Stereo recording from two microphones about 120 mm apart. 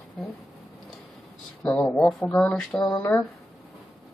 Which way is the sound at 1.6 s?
10° left (ahead or behind).